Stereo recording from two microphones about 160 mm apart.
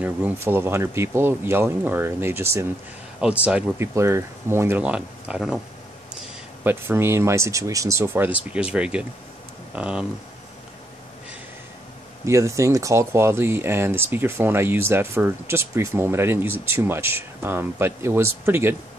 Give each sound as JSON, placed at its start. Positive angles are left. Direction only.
{"t": 0.0, "sound": "speech", "side_deg": -10}
{"t": 6.6, "sound": "speech", "side_deg": -15}
{"t": 12.3, "sound": "speech", "side_deg": -20}